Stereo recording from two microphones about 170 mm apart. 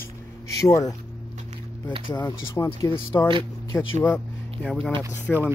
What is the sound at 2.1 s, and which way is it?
A man's voice, 20° left (ahead or behind).